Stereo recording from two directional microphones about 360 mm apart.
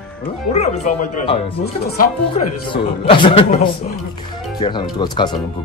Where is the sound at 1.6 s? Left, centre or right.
Left.